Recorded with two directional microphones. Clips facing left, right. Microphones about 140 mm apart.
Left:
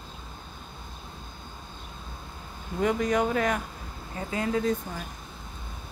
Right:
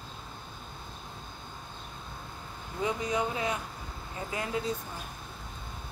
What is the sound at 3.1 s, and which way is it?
Speech, 50° left (ahead or behind).